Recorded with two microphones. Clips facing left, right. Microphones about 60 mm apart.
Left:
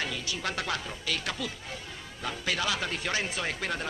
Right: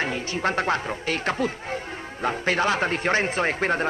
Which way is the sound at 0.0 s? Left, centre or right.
Right.